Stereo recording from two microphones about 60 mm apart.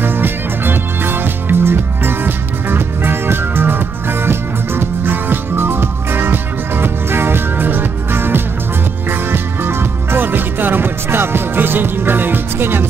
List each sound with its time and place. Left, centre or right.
0.0 s music: right